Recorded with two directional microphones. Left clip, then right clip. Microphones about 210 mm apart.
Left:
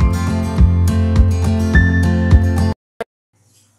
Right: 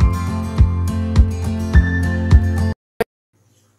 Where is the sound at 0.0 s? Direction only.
Centre (ahead or behind).